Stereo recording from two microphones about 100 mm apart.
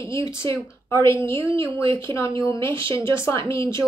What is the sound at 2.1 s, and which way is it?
Speech, 55° right (ahead or behind).